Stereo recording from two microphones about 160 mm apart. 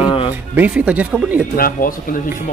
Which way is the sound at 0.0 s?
35° left (ahead or behind).